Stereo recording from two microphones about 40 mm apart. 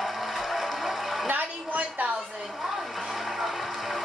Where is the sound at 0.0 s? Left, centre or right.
Centre.